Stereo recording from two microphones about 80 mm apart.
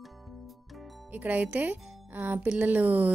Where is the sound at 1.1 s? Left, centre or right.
Right.